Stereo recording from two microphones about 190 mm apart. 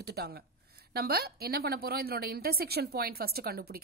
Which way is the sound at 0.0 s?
55° right (ahead or behind).